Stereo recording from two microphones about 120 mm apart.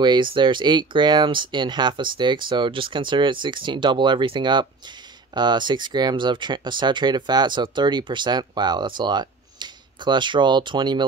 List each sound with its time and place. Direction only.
0.0 s speech: 40° right (ahead or behind)